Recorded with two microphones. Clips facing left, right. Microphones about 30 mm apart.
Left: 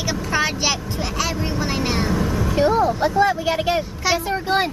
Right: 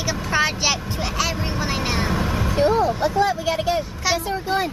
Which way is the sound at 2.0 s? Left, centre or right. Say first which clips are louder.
Left 1 dB; right.